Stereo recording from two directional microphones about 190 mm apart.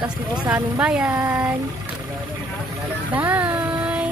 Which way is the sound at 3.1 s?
10° right (ahead or behind).